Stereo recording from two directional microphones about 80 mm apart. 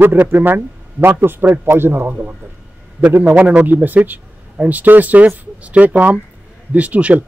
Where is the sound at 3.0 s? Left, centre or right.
Centre.